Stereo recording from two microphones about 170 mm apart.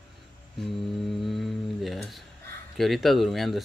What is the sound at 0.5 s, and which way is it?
A woman's voice, centre (ahead or behind).